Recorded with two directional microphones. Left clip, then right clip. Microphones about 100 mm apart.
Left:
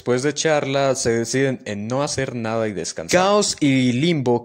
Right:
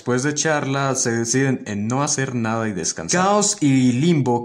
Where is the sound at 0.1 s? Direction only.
45° left (ahead or behind).